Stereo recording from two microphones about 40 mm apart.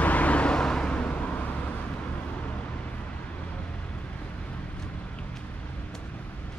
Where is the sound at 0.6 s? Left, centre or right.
Left.